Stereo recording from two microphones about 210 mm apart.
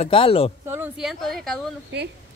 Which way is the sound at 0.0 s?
25° left (ahead or behind).